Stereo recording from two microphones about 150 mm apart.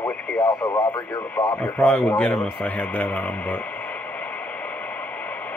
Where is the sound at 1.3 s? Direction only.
10° left (ahead or behind).